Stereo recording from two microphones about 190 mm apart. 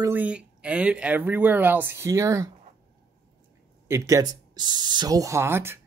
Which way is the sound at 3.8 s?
15° right (ahead or behind).